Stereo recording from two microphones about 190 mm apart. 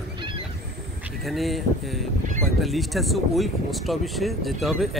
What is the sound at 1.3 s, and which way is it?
Speech, centre (ahead or behind).